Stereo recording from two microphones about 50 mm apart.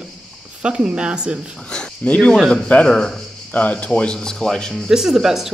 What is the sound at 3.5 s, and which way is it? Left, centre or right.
Speech, left.